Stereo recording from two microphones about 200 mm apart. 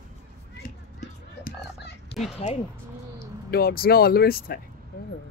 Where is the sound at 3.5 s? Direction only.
50° left (ahead or behind).